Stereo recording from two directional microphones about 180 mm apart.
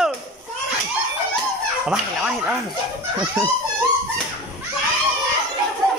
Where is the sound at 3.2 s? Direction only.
15° right (ahead or behind).